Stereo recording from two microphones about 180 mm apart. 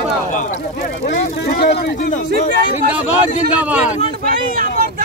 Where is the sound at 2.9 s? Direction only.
5° right (ahead or behind).